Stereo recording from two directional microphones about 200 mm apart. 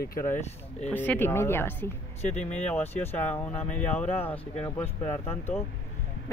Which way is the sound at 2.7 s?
10° left (ahead or behind).